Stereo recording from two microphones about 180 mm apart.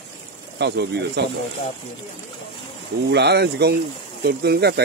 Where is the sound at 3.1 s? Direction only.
65° right (ahead or behind).